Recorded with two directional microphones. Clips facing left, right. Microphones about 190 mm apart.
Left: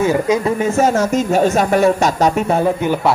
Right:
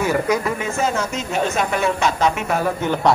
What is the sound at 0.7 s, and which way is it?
Speech, 45° left (ahead or behind).